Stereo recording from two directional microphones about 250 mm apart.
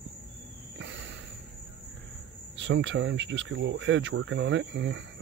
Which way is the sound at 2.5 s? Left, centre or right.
Right.